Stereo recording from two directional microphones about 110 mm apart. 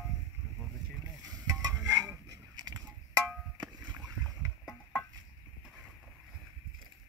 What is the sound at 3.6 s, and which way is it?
Rowboat, 40° right (ahead or behind).